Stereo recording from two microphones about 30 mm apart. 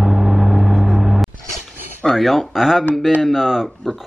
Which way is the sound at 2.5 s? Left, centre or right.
Centre.